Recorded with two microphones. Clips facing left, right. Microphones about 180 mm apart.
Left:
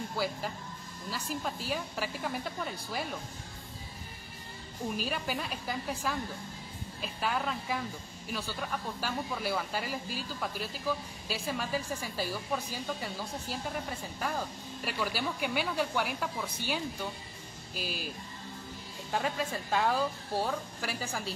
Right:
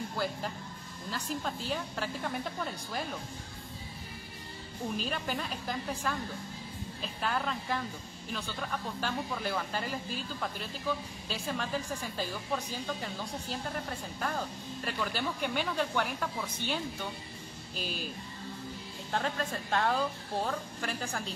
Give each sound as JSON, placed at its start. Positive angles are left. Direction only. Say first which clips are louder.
{"t": 0.2, "sound": "a woman's voice", "louder": "left 1 dB", "side_deg": 5}
{"t": 4.9, "sound": "a woman's voice", "louder": "even", "side_deg": 5}
{"t": 19.1, "sound": "speech", "louder": "left 1 dB", "side_deg": 5}